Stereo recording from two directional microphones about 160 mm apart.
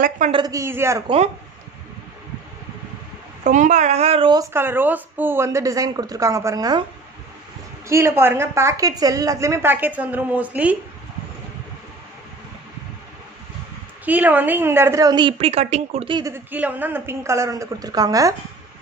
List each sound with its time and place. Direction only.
0.3 s a woman's voice: 25° right (ahead or behind)
1.0 s speech: 35° right (ahead or behind)
3.4 s speech: 50° right (ahead or behind)
4.3 s a woman's voice: 20° right (ahead or behind)
7.9 s a woman's voice: 15° right (ahead or behind)
14.0 s a woman's voice: 10° right (ahead or behind); by 16.1 s 45° right (ahead or behind)
16.1 s a woman's voice: 25° right (ahead or behind)
16.3 s a woman's voice: 10° right (ahead or behind)